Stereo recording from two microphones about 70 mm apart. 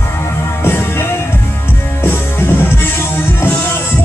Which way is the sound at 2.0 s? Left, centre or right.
Left.